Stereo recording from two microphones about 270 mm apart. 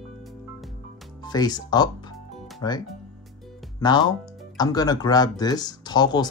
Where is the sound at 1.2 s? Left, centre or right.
Centre.